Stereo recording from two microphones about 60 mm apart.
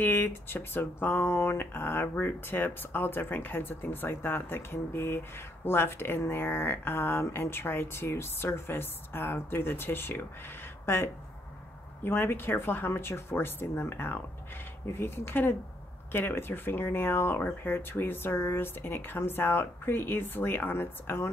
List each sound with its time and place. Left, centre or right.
0.0 s speech: left